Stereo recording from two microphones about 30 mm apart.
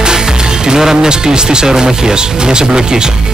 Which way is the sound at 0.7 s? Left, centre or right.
Right.